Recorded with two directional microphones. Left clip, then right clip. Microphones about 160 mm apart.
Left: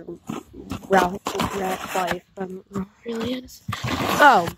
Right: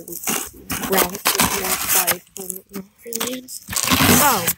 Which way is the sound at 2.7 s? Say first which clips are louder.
Left 2 dB; 10° left (ahead or behind).